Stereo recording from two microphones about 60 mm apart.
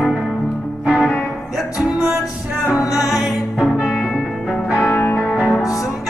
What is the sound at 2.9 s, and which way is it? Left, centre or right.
Music, centre.